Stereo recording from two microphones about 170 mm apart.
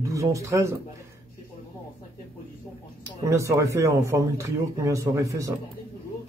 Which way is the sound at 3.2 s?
15° right (ahead or behind).